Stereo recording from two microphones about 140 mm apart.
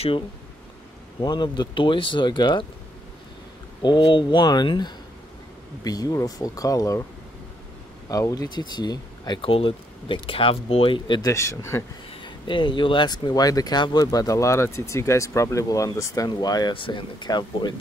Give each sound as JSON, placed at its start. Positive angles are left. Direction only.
{"t": 1.2, "sound": "speech", "side_deg": 30}
{"t": 3.8, "sound": "speech", "side_deg": 35}
{"t": 8.1, "sound": "speech", "side_deg": 25}
{"t": 9.4, "sound": "speech", "side_deg": 40}
{"t": 12.1, "sound": "speech", "side_deg": 35}